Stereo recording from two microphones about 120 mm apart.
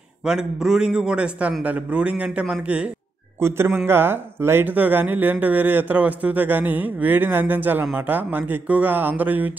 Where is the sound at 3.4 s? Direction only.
20° right (ahead or behind).